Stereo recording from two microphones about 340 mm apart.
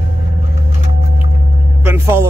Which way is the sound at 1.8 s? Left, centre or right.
Centre.